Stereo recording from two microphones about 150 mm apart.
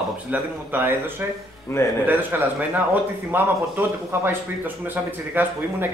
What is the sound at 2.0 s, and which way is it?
Speech, 10° right (ahead or behind).